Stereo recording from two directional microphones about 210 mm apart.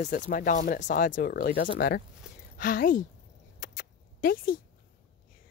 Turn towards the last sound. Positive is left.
turn(degrees=40)  # may be behind; listen again after turning